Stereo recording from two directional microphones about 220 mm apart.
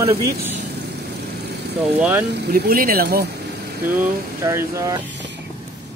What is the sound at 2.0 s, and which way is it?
Speech, 5° right (ahead or behind).